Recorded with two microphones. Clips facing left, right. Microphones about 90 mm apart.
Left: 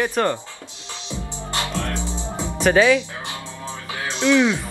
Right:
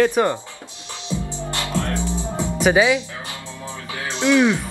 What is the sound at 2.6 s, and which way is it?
Speech, 10° right (ahead or behind).